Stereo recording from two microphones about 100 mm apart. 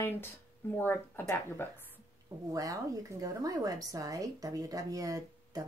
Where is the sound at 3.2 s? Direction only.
35° right (ahead or behind).